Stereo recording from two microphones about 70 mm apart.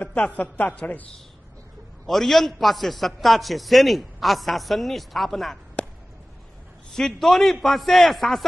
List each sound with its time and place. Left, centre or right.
0.0 s a woman's voice: centre
2.0 s a man's voice: centre
6.9 s a man's voice: centre